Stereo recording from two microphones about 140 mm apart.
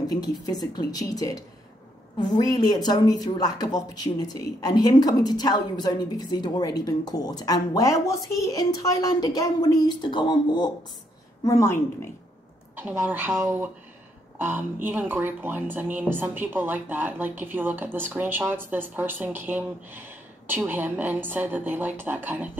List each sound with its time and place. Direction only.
0.0 s speech: 30° left (ahead or behind)
11.4 s speech: 20° left (ahead or behind)
12.7 s speech: 15° right (ahead or behind)